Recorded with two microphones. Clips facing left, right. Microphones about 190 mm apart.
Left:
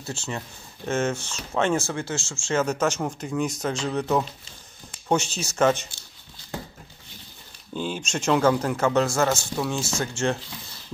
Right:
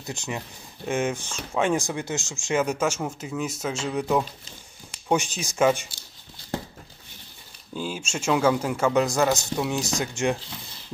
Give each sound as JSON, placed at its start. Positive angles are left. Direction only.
{"t": 0.0, "sound": "speech", "side_deg": -15}
{"t": 7.7, "sound": "speech", "side_deg": -5}